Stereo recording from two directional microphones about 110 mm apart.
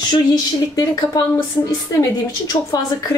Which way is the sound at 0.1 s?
35° left (ahead or behind).